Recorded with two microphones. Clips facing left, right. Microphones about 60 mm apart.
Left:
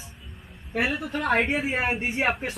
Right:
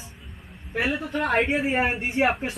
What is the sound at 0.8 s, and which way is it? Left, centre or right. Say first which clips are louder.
Speech: right 4 dB; right.